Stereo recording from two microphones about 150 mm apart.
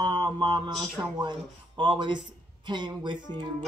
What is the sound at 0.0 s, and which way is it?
Mantra, 30° right (ahead or behind).